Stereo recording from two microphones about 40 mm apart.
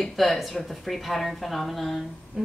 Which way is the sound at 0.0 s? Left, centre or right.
Centre.